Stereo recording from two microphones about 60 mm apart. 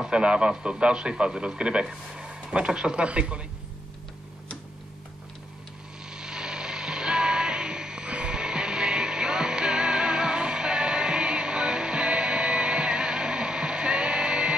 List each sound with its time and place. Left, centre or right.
0.0 s a man's voice: centre
6.0 s music: centre